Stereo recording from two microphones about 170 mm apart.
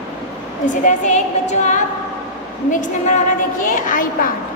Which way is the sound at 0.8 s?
45° left (ahead or behind).